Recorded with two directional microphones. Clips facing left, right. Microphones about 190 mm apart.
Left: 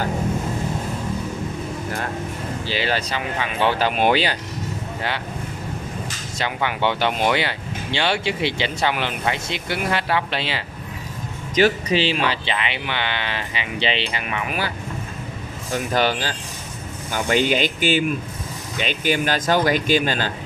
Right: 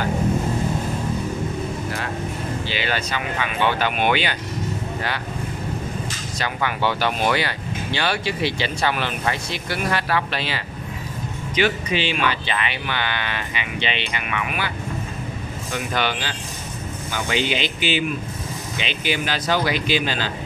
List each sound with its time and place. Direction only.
2.6 s speech: 35° left (ahead or behind)
6.3 s speech: 25° left (ahead or behind)
11.5 s speech: 40° left (ahead or behind)
15.7 s speech: 40° left (ahead or behind)